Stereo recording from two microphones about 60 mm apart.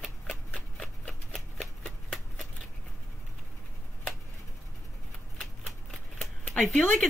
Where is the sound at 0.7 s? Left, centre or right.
Centre.